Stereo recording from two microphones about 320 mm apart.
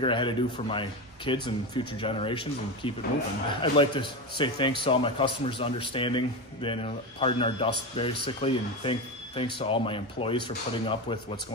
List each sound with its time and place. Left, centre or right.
0.0 s a man's voice: centre